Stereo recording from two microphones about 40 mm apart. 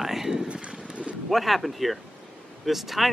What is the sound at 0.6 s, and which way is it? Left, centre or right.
Vehicle, right.